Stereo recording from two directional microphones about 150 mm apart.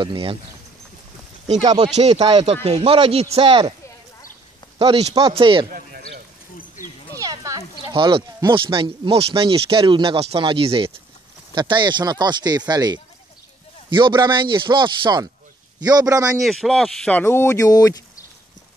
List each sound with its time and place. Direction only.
0.0 s speech: 35° right (ahead or behind)
1.7 s speech: 40° right (ahead or behind)
4.7 s speech: 40° right (ahead or behind)
5.7 s a sound: 80° right
7.2 s a sound: 20° right (ahead or behind)
7.8 s speech: 35° right (ahead or behind)
16.3 s speech: centre (ahead or behind); by 18.2 s 25° left (ahead or behind)